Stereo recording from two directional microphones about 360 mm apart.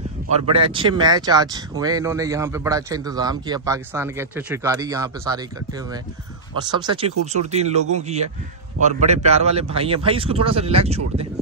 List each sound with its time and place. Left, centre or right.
0.3 s speech: centre
6.5 s speech: centre